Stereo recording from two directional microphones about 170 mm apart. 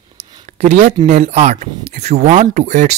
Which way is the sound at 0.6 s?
45° right (ahead or behind).